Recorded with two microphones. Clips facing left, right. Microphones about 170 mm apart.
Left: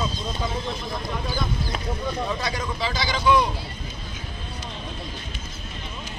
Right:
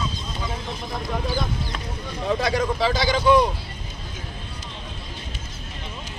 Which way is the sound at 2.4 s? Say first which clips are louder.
Right 6 dB; 60° right (ahead or behind).